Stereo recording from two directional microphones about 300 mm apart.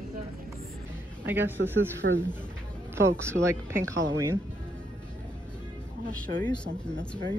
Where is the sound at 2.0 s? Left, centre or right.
Right.